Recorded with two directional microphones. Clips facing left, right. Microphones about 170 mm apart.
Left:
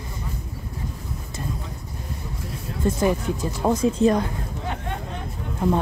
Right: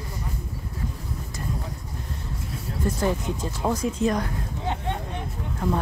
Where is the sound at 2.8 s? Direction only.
15° left (ahead or behind).